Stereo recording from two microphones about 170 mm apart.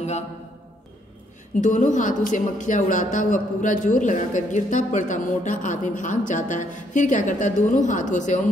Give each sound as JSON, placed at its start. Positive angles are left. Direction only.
{"t": 1.6, "sound": "a woman's voice", "side_deg": 50}